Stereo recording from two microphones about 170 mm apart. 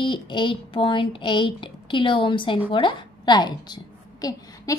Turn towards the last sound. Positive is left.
turn(degrees=20)  # may be behind; listen again after turning